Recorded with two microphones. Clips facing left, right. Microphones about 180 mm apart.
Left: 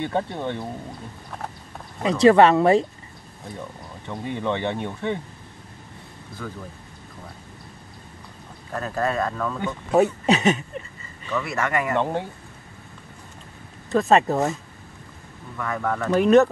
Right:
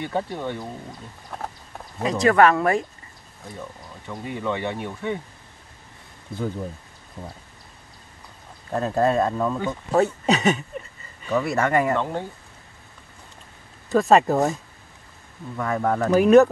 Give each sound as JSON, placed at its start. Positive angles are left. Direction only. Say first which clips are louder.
{"t": 0.0, "sound": "speech", "louder": "left 1 dB", "side_deg": 25}
{"t": 2.0, "sound": "speech", "louder": "left 3 dB", "side_deg": 25}
{"t": 4.2, "sound": "speech", "louder": "left 1 dB", "side_deg": 25}
{"t": 8.7, "sound": "speech", "louder": "right 4 dB", "side_deg": -25}
{"t": 9.8, "sound": "speech", "louder": "left 2 dB", "side_deg": 10}
{"t": 11.2, "sound": "speech", "louder": "right 4 dB", "side_deg": -35}
{"t": 13.8, "sound": "speech", "louder": "right 1 dB", "side_deg": 0}
{"t": 15.5, "sound": "speech", "louder": "right 3 dB", "side_deg": -30}
{"t": 16.1, "sound": "speech", "louder": "right 2 dB", "side_deg": -5}